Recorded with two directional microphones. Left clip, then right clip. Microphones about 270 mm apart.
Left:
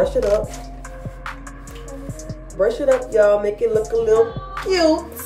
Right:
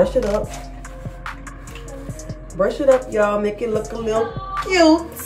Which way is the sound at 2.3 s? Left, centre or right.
Centre.